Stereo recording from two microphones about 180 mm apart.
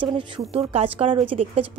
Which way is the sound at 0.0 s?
30° right (ahead or behind).